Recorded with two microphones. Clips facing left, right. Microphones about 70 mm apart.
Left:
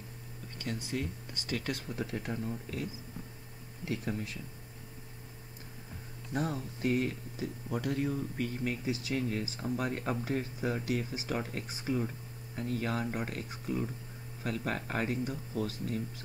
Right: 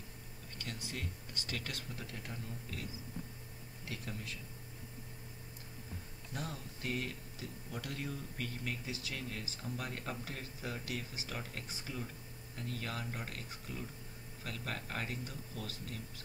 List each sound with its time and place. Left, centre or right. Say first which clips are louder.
1.5 s speech: left 8 dB; centre
2.0 s speech: left 10 dB; left
3.8 s speech: left 9 dB; left
6.3 s speech: left 10 dB; left